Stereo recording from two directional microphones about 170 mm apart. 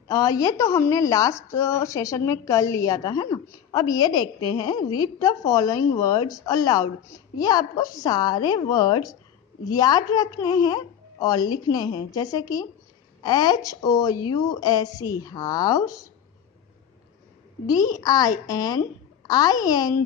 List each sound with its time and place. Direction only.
0.1 s a woman's voice: 20° left (ahead or behind)
17.6 s a woman's voice: 20° left (ahead or behind)